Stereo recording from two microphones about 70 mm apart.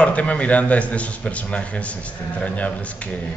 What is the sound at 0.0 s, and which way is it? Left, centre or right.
Speech, centre.